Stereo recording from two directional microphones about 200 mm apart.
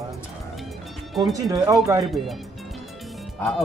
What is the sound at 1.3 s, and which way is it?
Speech, 15° right (ahead or behind).